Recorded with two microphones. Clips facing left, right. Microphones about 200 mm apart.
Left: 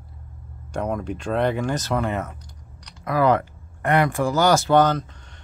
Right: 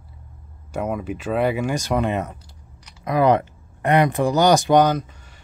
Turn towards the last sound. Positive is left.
turn(degrees=-10)  # may be behind; listen again after turning